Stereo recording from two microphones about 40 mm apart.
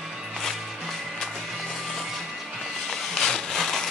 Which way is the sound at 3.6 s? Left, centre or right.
Centre.